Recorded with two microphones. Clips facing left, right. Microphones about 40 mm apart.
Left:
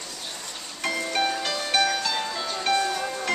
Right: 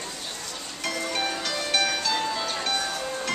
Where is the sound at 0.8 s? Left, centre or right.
Centre.